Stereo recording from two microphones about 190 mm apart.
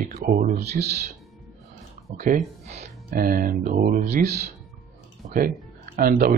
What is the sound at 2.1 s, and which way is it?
Speech, 45° right (ahead or behind).